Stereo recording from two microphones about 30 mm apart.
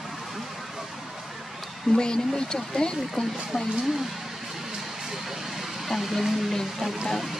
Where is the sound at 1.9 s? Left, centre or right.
Left.